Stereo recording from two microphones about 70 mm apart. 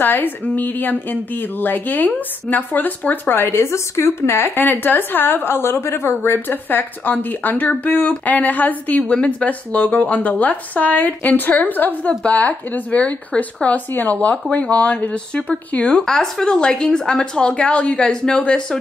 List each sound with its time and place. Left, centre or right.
0.0 s speech: left; by 18.8 s centre